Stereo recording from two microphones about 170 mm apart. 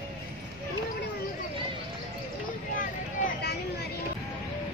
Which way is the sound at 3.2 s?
70° left (ahead or behind).